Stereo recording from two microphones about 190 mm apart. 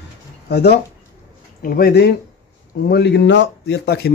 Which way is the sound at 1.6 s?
50° left (ahead or behind).